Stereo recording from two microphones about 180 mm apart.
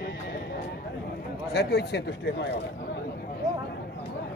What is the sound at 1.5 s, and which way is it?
Speech, 65° left (ahead or behind).